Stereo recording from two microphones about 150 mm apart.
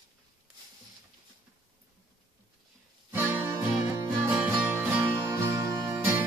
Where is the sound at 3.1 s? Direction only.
15° right (ahead or behind).